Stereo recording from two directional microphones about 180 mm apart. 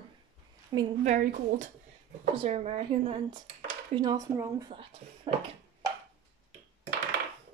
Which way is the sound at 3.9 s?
20° right (ahead or behind).